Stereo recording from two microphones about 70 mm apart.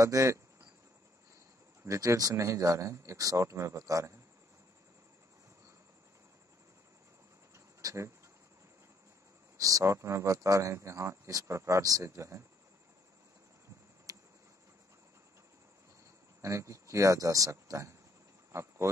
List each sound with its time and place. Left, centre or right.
0.0 s speech: right
1.9 s speech: right
7.5 s pigeon: right
9.6 s speech: right
14.1 s a sound: right
16.3 s speech: right
18.5 s a sound: right